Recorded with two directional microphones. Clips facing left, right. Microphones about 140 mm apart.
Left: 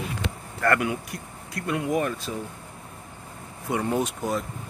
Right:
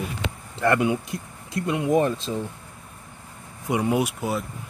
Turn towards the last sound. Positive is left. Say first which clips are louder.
# right 2 dB
turn(degrees=-10)  # may be behind; listen again after turning